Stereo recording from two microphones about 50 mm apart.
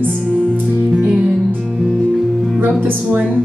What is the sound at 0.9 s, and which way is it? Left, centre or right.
Music, centre.